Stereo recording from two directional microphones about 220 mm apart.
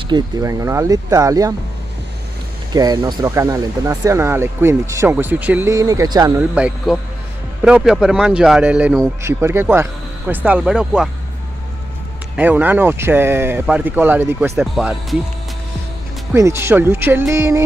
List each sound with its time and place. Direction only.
0.1 s speech: 15° right (ahead or behind)
2.7 s speech: 20° right (ahead or behind)
6.5 s speech: 5° right (ahead or behind)
12.4 s speech: 10° right (ahead or behind)
16.3 s speech: 10° right (ahead or behind)